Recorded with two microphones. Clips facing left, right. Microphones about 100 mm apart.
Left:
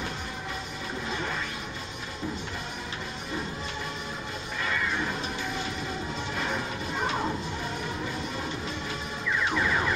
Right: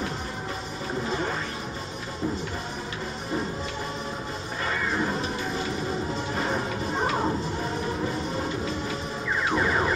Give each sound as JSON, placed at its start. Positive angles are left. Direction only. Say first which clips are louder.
{"t": 4.6, "sound": "music", "louder": "right 3 dB", "side_deg": -35}
{"t": 6.3, "sound": "music", "louder": "right 3 dB", "side_deg": -30}
{"t": 9.5, "sound": "car alarm", "louder": "right 4 dB", "side_deg": -35}